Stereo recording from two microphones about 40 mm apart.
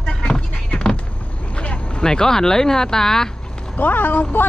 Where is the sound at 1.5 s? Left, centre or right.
Left.